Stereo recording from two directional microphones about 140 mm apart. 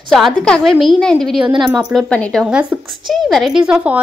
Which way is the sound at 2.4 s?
10° right (ahead or behind).